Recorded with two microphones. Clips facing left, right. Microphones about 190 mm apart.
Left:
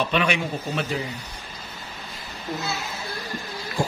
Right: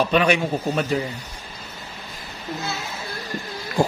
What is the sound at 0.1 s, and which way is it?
Speech, 40° right (ahead or behind).